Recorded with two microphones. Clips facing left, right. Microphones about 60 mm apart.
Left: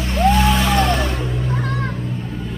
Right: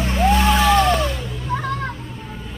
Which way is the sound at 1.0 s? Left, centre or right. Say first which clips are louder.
Left 2 dB; left.